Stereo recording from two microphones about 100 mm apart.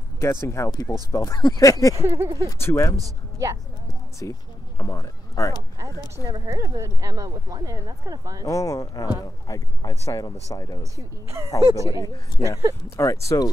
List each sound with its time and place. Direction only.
0.2 s speech: 25° left (ahead or behind)
2.0 s speech: 30° right (ahead or behind)
2.6 s speech: 30° left (ahead or behind)
3.0 s speech: 35° right (ahead or behind)
4.2 s speech: 30° left (ahead or behind)
6.3 s speech: 35° right (ahead or behind)
8.5 s speech: 35° left (ahead or behind)
10.8 s speech: 30° right (ahead or behind)
12.9 s speech: 30° left (ahead or behind)